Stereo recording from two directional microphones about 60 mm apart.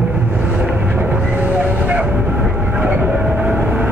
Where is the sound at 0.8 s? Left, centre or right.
Right.